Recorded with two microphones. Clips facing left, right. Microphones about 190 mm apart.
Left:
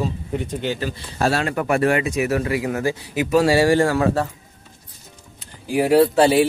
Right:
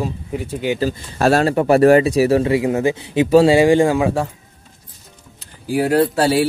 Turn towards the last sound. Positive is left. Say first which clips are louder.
# left 1 dB
turn(degrees=5)  # may be behind; listen again after turning